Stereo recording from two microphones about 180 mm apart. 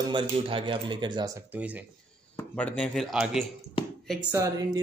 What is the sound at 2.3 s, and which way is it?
Speech, 10° left (ahead or behind).